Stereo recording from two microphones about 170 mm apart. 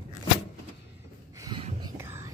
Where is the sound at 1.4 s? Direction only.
30° right (ahead or behind).